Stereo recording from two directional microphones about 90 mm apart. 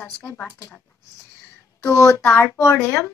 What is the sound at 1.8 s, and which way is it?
Speech, 30° left (ahead or behind).